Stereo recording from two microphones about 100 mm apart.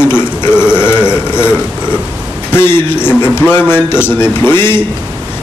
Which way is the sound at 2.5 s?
20° left (ahead or behind).